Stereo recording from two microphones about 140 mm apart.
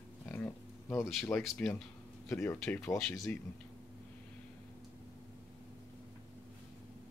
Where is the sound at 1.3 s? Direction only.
15° left (ahead or behind).